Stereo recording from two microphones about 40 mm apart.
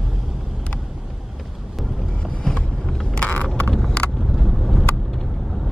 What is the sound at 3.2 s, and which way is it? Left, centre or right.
Vehicle, left.